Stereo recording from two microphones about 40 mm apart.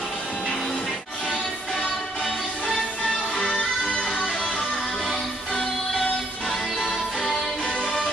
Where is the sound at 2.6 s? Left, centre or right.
Left.